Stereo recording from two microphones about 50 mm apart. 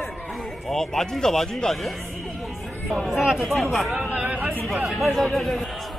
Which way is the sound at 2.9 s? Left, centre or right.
Centre.